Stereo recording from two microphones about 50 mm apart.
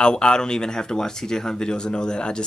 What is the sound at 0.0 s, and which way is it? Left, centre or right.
Speech, centre.